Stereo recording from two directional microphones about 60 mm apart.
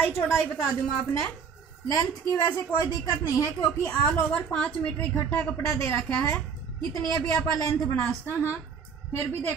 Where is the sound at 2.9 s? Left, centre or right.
Left.